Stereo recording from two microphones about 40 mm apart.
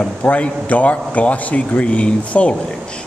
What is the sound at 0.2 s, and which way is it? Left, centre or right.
A man's voice, left.